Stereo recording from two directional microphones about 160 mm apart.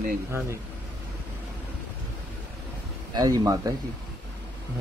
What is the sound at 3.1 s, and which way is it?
Speech, 25° right (ahead or behind).